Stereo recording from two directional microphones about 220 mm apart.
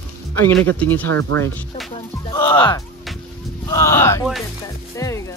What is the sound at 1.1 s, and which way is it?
Speech, 60° right (ahead or behind).